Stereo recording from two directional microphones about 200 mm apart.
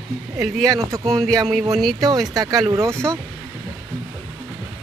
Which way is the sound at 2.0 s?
20° right (ahead or behind).